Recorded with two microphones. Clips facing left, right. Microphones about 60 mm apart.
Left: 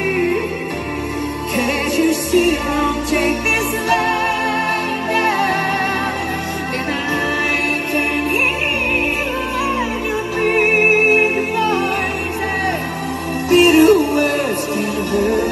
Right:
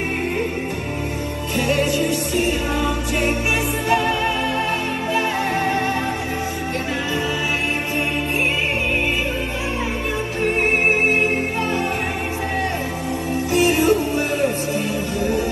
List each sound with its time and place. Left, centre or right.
1.6 s music: left
13.5 s music: left